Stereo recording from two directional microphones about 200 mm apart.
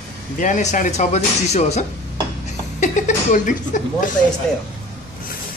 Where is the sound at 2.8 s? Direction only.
40° left (ahead or behind).